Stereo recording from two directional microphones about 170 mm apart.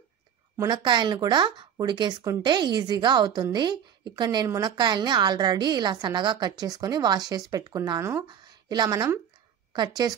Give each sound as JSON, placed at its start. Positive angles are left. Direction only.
{"t": 0.6, "sound": "a woman's voice", "side_deg": -25}